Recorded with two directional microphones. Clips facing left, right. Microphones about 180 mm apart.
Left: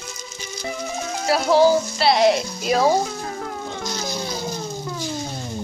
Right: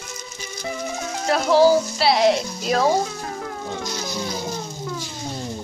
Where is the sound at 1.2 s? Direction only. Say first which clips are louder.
Even; 5° left (ahead or behind).